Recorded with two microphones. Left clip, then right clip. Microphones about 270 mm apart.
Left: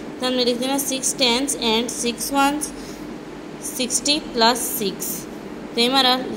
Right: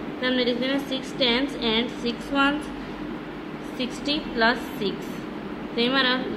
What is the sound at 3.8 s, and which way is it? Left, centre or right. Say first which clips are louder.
A woman's voice: left 6 dB; left.